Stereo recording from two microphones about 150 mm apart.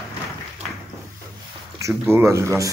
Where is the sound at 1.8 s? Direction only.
20° right (ahead or behind).